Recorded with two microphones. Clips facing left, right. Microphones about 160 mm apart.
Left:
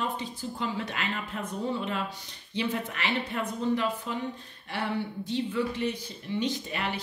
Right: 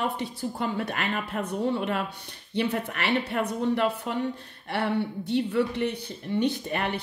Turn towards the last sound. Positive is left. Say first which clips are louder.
# right 3 dB
turn(degrees=-55)  # may be behind; listen again after turning